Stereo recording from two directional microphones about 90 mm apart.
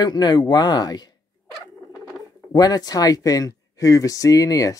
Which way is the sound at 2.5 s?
45° left (ahead or behind).